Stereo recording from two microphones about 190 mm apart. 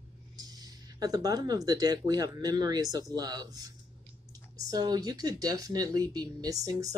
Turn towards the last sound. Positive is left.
turn(degrees=-20)  # may be behind; listen again after turning